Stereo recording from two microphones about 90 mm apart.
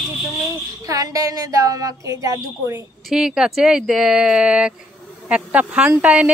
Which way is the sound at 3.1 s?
5° right (ahead or behind).